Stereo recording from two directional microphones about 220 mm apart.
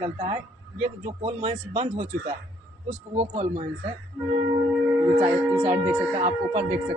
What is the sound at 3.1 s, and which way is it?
Speech, 30° right (ahead or behind).